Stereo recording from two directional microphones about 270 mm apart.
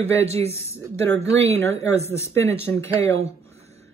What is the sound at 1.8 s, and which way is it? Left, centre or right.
Speech, centre.